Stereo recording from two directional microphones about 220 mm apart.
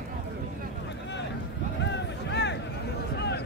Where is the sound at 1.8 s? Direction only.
50° left (ahead or behind).